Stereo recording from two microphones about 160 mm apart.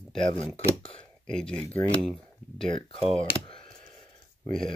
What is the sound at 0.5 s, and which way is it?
Speech, 35° left (ahead or behind).